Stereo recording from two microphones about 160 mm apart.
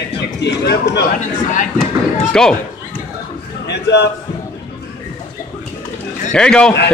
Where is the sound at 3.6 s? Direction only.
90° left.